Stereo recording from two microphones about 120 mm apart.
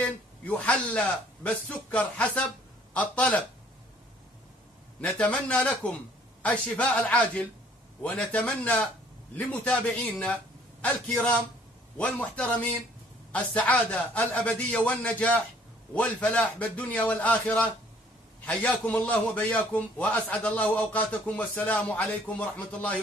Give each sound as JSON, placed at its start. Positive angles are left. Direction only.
{"t": 0.0, "sound": "speech", "side_deg": 10}
{"t": 5.0, "sound": "a man's voice", "side_deg": 10}